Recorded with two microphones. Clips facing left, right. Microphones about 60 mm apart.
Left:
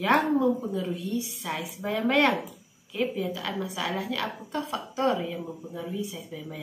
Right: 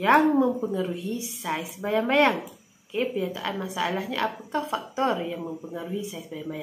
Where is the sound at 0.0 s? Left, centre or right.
Right.